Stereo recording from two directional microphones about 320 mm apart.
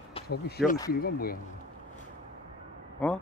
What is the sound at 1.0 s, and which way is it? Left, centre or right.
Speech, left.